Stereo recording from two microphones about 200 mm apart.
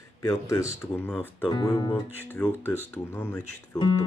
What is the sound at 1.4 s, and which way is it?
Speech, 25° left (ahead or behind).